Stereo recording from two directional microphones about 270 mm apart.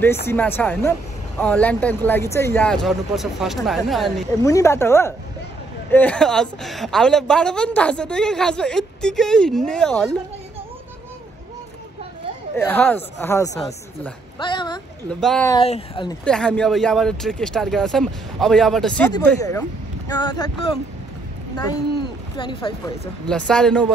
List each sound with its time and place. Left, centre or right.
0.3 s a woman's voice: centre
4.4 s a woman's voice: centre
12.5 s speech: centre
15.0 s a woman's voice: centre
15.5 s speech: left
16.3 s a woman's voice: centre
22.4 s speech: centre
23.2 s a woman's voice: centre